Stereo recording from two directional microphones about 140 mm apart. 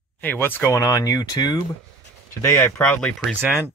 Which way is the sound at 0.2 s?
15° left (ahead or behind).